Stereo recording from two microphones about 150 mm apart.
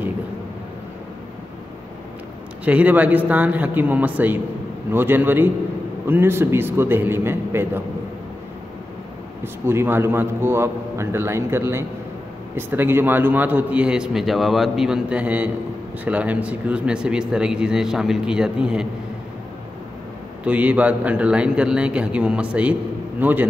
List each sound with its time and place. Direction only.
2.6 s a man's voice: 10° right (ahead or behind)
9.4 s a man's voice: 15° right (ahead or behind)
20.4 s a man's voice: 10° right (ahead or behind)